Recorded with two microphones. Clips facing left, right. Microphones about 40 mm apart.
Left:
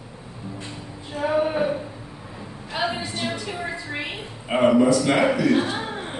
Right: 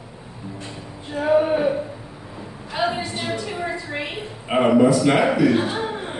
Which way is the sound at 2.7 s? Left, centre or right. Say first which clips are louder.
Right 3 dB; centre.